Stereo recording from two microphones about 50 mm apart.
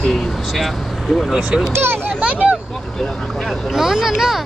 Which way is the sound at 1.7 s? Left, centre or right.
Right.